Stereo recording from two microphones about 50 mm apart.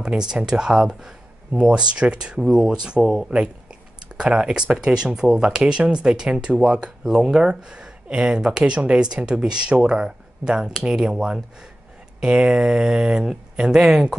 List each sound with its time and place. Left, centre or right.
0.0 s speech: centre
4.2 s speech: right